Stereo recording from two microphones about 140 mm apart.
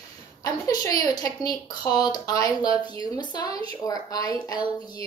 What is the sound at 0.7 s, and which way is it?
Speech, 25° left (ahead or behind).